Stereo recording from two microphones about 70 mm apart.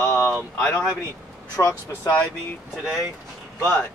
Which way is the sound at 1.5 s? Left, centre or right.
Left.